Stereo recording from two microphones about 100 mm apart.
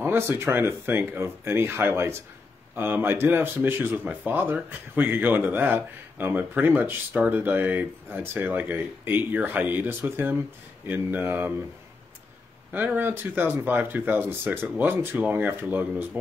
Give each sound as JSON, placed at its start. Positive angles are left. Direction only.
{"t": 0.0, "sound": "speech", "side_deg": -25}
{"t": 12.7, "sound": "speech", "side_deg": -20}